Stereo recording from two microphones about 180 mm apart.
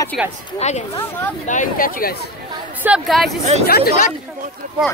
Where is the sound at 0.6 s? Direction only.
40° left (ahead or behind).